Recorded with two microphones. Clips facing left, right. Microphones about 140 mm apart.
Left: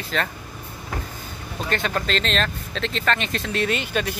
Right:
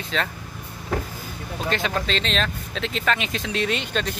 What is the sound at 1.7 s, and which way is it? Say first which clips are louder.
Speech: left 1 dB; centre (ahead or behind).